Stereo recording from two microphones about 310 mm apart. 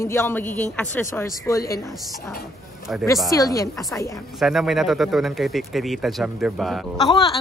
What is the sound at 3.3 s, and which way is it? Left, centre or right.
Speech, centre.